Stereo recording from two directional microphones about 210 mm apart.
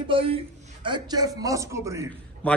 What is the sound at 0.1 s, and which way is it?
A man's voice, 25° right (ahead or behind).